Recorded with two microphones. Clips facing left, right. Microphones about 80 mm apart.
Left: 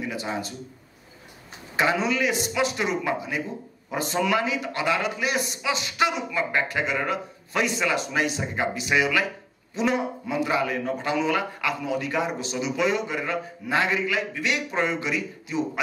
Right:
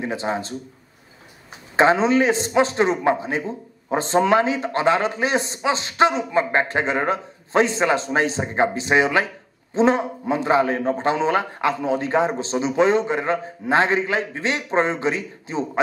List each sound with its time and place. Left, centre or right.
0.0 s a man's voice: right
1.8 s a man's voice: right